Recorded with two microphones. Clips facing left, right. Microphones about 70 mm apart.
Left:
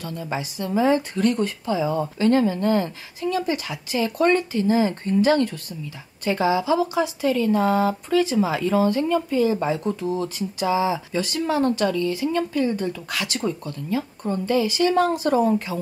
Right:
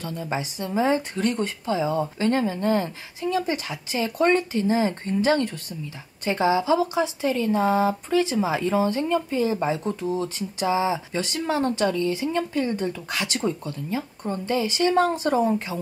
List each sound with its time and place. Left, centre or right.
0.1 s speech: centre